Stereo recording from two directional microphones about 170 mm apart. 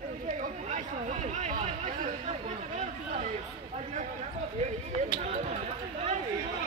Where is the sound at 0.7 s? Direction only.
45° right (ahead or behind).